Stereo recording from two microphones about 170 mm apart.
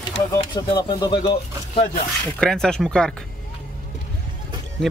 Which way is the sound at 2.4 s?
5° left (ahead or behind).